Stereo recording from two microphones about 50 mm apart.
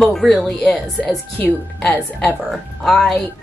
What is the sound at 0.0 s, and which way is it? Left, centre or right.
Speech, centre.